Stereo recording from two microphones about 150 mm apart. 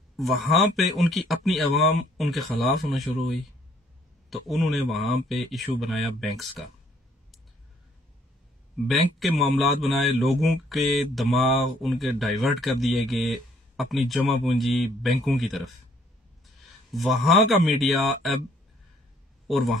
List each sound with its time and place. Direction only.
0.1 s speech: centre (ahead or behind)
8.7 s a man's voice: centre (ahead or behind)
16.9 s speech: centre (ahead or behind)
19.5 s speech: centre (ahead or behind)